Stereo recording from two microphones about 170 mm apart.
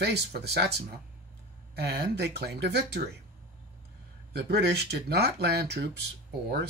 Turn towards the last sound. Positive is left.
turn(degrees=-70)  # may be behind; listen again after turning